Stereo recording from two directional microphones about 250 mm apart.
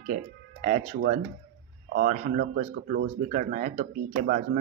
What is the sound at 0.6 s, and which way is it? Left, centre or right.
Speech, right.